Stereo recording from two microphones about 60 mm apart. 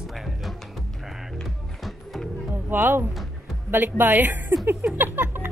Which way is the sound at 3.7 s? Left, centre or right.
Right.